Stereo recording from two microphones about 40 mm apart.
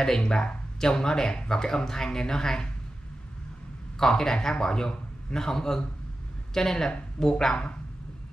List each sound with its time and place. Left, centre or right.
0.0 s speech: centre
4.0 s speech: centre